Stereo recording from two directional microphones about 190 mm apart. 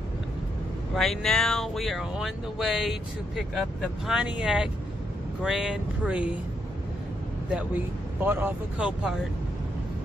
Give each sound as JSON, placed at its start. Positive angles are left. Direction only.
{"t": 0.9, "sound": "speech", "side_deg": 0}
{"t": 7.5, "sound": "speech", "side_deg": -10}